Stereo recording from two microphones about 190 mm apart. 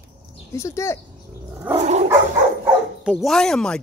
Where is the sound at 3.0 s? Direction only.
Centre (ahead or behind).